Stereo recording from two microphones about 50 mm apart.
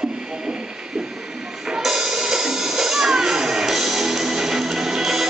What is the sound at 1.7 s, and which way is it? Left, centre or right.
Music, centre.